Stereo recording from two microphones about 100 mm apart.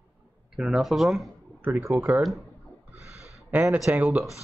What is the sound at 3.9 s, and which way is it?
Speech, 15° right (ahead or behind).